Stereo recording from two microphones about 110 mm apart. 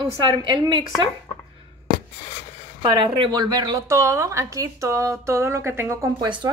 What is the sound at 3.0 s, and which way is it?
Speech, 55° right (ahead or behind).